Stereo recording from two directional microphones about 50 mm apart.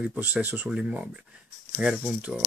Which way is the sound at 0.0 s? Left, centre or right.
Right.